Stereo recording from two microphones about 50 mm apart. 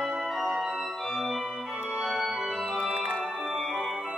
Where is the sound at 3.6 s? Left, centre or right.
Centre.